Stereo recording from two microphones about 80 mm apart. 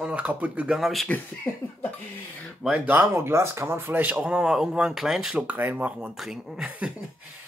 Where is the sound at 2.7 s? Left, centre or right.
Right.